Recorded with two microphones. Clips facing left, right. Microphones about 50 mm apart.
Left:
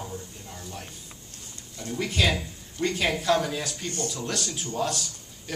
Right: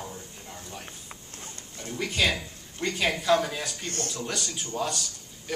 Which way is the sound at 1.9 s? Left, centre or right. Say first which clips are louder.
Left 1 dB; centre.